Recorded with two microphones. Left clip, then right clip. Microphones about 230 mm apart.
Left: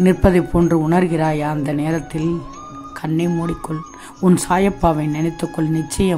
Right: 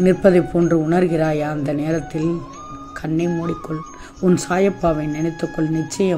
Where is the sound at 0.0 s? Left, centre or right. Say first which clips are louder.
Right 1 dB; centre.